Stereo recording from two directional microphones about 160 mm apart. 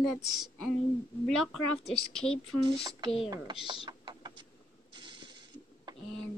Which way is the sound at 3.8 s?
25° right (ahead or behind).